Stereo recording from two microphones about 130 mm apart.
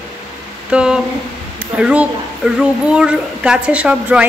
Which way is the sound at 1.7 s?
10° right (ahead or behind).